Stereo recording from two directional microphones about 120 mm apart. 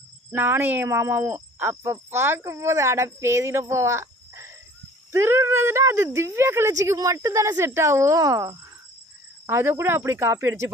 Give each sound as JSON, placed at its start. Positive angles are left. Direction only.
{"t": 0.3, "sound": "speech", "side_deg": -20}